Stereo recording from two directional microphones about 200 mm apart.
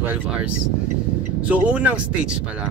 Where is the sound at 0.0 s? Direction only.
10° right (ahead or behind).